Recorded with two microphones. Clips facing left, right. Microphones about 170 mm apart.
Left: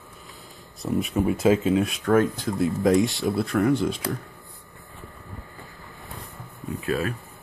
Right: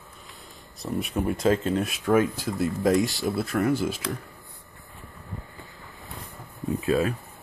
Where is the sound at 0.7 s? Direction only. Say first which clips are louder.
Left 4 dB; centre (ahead or behind).